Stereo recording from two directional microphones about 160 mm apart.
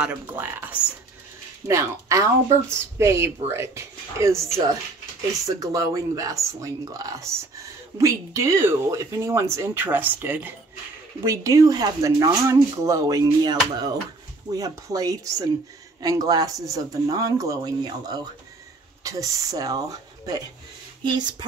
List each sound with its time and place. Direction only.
0.0 s speech: 10° right (ahead or behind); by 21.5 s 30° right (ahead or behind)